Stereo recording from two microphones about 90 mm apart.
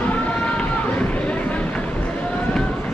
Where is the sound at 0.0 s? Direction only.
15° left (ahead or behind).